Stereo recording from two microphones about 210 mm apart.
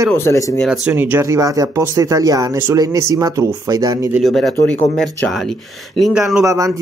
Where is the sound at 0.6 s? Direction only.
5° right (ahead or behind).